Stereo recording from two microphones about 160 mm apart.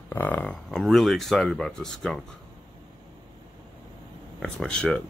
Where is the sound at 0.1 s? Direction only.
10° left (ahead or behind).